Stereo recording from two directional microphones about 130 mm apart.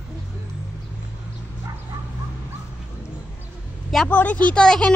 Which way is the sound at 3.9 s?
10° left (ahead or behind).